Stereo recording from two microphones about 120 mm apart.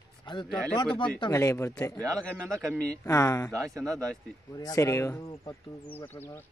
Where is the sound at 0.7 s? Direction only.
45° left (ahead or behind).